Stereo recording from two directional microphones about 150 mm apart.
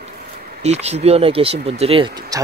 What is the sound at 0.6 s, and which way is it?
Speech, 45° right (ahead or behind).